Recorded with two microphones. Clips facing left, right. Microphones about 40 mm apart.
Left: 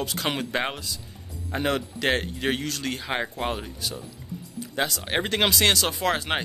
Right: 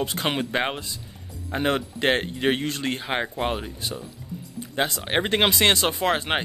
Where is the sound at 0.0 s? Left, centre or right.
Right.